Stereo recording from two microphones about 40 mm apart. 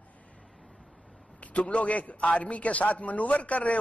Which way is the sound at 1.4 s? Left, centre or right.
Left.